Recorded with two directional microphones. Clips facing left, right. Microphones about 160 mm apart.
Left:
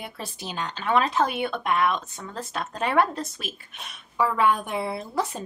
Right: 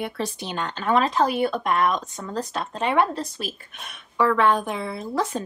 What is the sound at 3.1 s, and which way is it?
Speech, 35° right (ahead or behind).